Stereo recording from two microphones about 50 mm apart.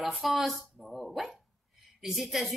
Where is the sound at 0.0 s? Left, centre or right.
Centre.